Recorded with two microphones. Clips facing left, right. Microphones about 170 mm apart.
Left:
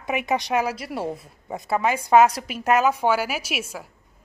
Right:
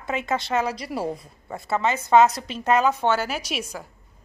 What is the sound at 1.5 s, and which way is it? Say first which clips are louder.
A woman's voice: left 1 dB; 15° left (ahead or behind).